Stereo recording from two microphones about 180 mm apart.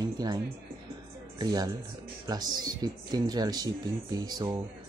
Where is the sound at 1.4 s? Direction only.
20° right (ahead or behind).